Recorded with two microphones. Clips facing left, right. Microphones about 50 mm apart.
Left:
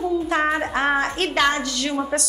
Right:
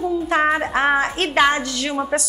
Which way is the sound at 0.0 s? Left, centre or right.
Centre.